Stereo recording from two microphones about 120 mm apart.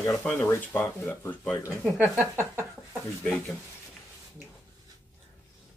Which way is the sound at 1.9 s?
20° right (ahead or behind).